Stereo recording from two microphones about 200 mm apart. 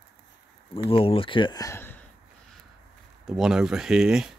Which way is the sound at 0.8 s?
30° left (ahead or behind).